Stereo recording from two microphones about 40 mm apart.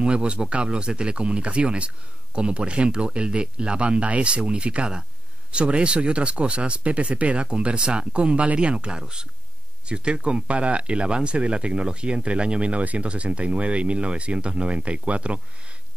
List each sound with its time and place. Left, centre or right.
0.0 s speech: right